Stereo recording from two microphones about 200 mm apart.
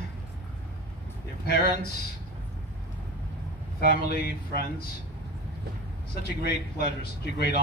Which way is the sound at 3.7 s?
50° left (ahead or behind).